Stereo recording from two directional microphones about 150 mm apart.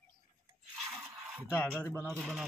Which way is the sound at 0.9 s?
Centre (ahead or behind).